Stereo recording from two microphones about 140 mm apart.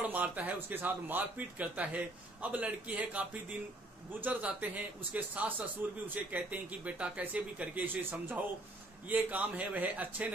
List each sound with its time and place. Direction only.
0.0 s a man's voice: 10° right (ahead or behind)